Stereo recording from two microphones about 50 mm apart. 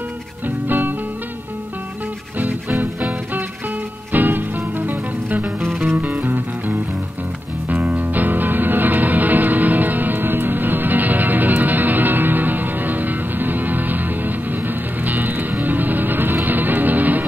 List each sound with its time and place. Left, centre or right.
0.7 s music: right
2.3 s music: right
8.0 s music: right